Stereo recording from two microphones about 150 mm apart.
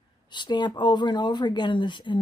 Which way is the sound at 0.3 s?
30° left (ahead or behind).